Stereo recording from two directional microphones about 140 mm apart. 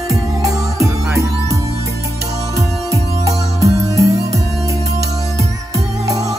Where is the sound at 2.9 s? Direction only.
20° right (ahead or behind).